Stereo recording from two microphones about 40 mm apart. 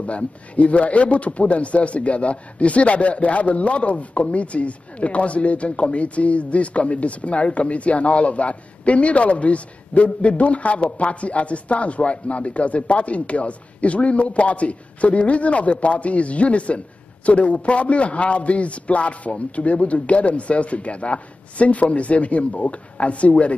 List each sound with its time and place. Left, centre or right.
0.0 s a man's voice: left